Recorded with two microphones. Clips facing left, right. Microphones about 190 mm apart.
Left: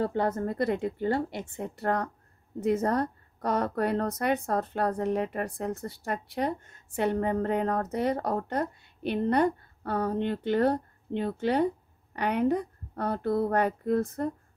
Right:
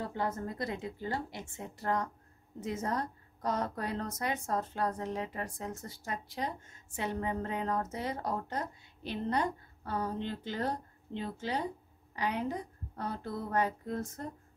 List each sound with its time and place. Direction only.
0.0 s a woman's voice: 60° left (ahead or behind)